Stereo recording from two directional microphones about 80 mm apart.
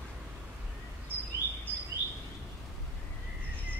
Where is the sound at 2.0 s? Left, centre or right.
Right.